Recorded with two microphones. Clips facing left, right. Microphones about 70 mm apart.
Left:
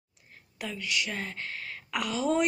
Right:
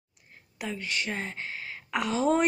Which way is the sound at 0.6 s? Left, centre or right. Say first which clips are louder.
Even; right.